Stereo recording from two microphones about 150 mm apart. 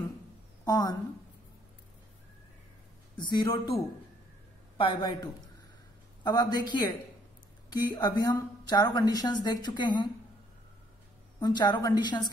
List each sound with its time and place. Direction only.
0.7 s a woman's voice: 25° left (ahead or behind)
3.2 s a woman's voice: 30° left (ahead or behind)
4.7 s a man's voice: 30° left (ahead or behind)
11.3 s a woman's voice: 30° left (ahead or behind)